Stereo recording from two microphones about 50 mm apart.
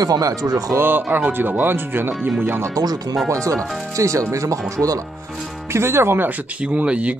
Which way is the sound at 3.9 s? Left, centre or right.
Right.